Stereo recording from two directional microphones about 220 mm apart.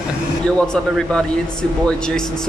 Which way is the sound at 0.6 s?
5° left (ahead or behind).